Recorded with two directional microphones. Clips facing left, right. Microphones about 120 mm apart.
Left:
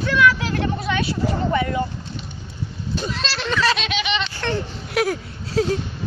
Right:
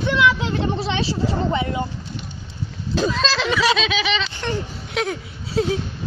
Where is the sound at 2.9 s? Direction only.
90° right.